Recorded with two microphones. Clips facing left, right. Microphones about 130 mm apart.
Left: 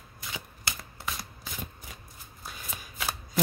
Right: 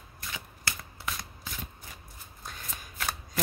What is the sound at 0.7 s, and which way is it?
Shuffling cards, 20° left (ahead or behind).